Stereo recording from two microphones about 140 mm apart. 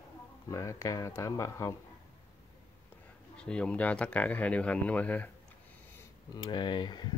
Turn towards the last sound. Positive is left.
turn(degrees=30)  # may be behind; listen again after turning